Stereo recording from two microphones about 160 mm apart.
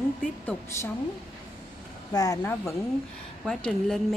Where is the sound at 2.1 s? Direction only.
20° left (ahead or behind).